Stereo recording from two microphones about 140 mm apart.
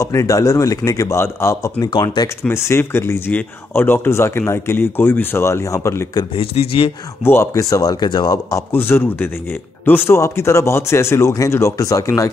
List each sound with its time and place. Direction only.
0.0 s speech: 20° left (ahead or behind)
2.4 s speech: 20° left (ahead or behind)
6.3 s speech: 45° left (ahead or behind)
7.2 s speech: 20° left (ahead or behind)